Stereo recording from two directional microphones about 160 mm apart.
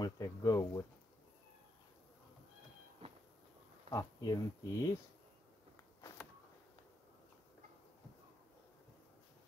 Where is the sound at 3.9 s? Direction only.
25° left (ahead or behind).